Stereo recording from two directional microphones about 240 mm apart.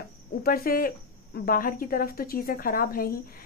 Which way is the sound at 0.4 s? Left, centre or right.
Left.